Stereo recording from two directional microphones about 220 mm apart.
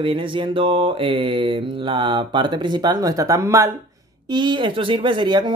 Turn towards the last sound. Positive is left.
turn(degrees=-20)  # may be behind; listen again after turning